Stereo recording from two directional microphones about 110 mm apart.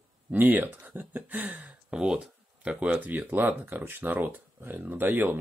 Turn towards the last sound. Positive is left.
turn(degrees=-20)  # may be behind; listen again after turning